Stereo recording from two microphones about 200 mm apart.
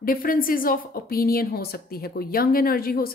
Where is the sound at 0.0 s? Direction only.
45° left (ahead or behind).